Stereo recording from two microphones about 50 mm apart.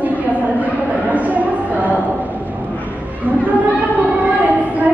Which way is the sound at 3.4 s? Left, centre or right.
Right.